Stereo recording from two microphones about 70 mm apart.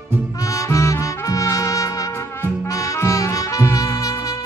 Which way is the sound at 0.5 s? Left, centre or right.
Left.